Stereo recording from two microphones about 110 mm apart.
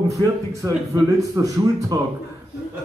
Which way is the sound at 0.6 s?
30° right (ahead or behind).